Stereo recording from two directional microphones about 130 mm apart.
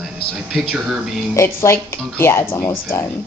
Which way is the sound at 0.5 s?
Centre (ahead or behind).